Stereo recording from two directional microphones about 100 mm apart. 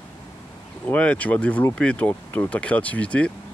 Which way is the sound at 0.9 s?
15° left (ahead or behind).